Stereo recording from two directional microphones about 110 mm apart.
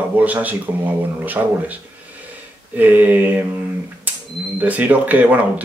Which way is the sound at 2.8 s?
15° right (ahead or behind).